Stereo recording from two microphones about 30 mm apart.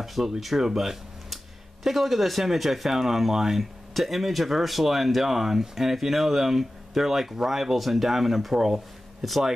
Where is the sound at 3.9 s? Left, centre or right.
Centre.